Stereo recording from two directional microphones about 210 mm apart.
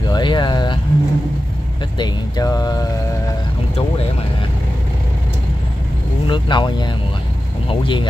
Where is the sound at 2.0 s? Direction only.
20° left (ahead or behind).